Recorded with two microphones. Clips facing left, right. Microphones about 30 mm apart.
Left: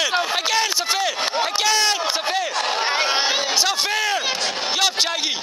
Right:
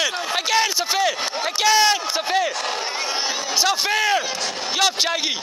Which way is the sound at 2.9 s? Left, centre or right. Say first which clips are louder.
Left 5 dB; left.